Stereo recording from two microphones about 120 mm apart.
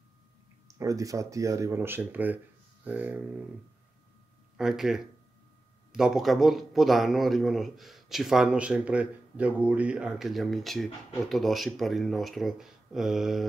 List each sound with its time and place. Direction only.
0.7 s speech: 25° right (ahead or behind)
4.6 s speech: 5° right (ahead or behind)